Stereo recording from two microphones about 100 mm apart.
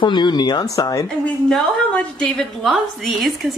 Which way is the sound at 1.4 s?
5° left (ahead or behind).